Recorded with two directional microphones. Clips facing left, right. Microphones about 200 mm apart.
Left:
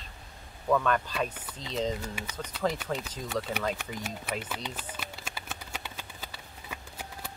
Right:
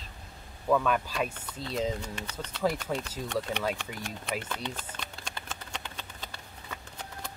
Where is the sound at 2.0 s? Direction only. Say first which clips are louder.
Left 1 dB; 10° left (ahead or behind).